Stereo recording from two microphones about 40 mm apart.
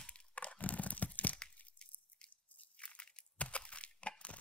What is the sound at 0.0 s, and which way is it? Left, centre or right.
Tearing, left.